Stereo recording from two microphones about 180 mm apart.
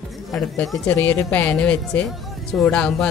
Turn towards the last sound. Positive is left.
turn(degrees=5)  # may be behind; listen again after turning